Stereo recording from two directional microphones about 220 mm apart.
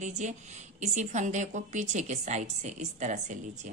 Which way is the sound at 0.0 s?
35° right (ahead or behind).